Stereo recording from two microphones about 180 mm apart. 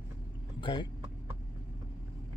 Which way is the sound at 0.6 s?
25° left (ahead or behind).